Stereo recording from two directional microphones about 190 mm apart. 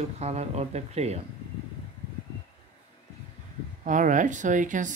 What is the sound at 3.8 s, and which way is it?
Speech, 40° right (ahead or behind).